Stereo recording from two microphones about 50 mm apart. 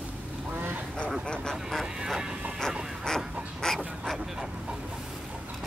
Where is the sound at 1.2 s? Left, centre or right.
Centre.